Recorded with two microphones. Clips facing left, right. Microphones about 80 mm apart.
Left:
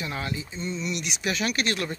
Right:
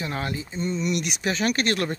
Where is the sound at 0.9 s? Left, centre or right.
Right.